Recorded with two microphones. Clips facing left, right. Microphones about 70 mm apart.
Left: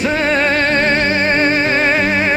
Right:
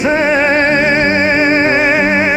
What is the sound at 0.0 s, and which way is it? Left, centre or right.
Music, centre.